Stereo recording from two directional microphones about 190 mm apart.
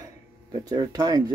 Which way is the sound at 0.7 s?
20° right (ahead or behind).